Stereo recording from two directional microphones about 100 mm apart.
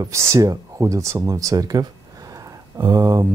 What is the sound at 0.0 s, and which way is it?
Speech, 35° right (ahead or behind).